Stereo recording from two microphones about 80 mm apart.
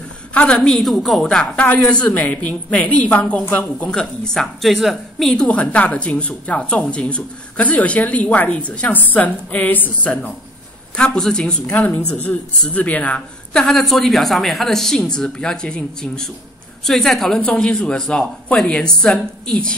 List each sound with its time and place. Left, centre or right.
0.3 s a woman's voice: centre
0.7 s a woman's voice: centre
11.0 s a woman's voice: centre